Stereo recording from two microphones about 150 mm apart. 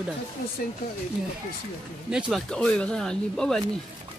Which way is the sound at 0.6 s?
70° left (ahead or behind).